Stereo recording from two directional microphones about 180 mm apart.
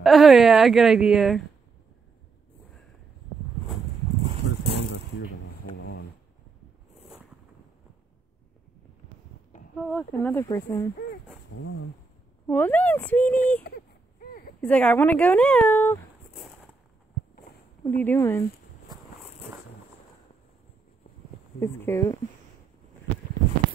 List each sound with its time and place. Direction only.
0.0 s a woman's voice: centre (ahead or behind)
4.2 s a sound: 35° right (ahead or behind)
5.8 s a sound: 75° left (ahead or behind)
9.8 s a woman's voice: 5° left (ahead or behind); by 10.9 s 20° left (ahead or behind)
12.4 s a woman's voice: 10° left (ahead or behind)
17.9 s a woman's voice: 10° left (ahead or behind)
21.5 s a woman's voice: 15° left (ahead or behind)